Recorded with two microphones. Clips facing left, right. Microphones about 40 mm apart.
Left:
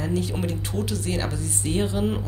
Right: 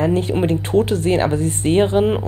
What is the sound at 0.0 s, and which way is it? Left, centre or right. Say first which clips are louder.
Speech: right 9 dB; right.